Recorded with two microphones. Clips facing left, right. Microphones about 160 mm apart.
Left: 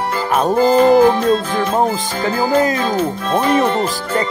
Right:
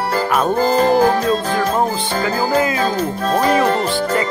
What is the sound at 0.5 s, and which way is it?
Music, 40° right (ahead or behind).